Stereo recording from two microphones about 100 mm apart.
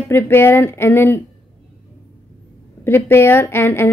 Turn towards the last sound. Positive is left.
turn(degrees=25)  # may be behind; listen again after turning